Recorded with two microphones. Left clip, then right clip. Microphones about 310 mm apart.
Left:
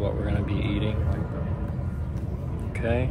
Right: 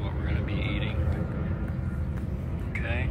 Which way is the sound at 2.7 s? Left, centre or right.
Centre.